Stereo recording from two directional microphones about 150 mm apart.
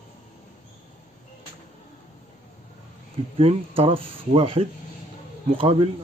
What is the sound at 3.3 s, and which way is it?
Speech, 40° right (ahead or behind).